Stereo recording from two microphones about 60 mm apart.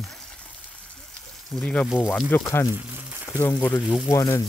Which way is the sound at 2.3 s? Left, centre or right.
Left.